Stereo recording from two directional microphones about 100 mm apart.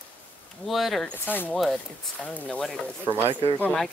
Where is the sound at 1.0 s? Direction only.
20° left (ahead or behind).